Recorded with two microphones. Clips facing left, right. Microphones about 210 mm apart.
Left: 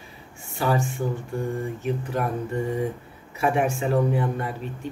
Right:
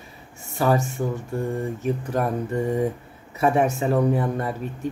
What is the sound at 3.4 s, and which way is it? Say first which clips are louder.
A man's voice: right 3 dB; 40° right (ahead or behind).